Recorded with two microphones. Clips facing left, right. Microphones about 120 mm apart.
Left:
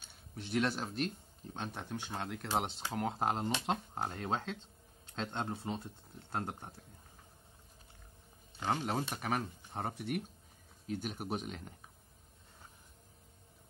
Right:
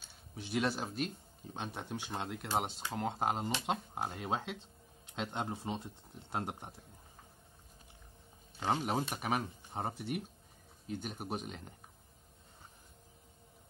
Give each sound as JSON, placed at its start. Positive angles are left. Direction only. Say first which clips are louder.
{"t": 0.4, "sound": "speech", "louder": "even", "side_deg": -5}
{"t": 8.5, "sound": "speech", "louder": "right 1 dB", "side_deg": -20}
{"t": 9.8, "sound": "speech", "louder": "even", "side_deg": 0}